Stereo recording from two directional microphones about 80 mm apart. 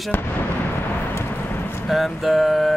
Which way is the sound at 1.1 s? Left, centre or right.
Left.